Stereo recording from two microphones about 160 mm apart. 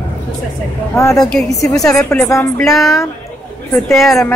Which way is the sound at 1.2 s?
5° left (ahead or behind).